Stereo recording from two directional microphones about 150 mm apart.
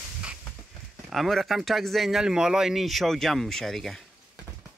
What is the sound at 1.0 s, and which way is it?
Speech, centre (ahead or behind).